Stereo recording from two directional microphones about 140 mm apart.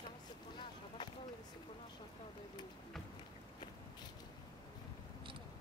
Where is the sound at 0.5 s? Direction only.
35° left (ahead or behind).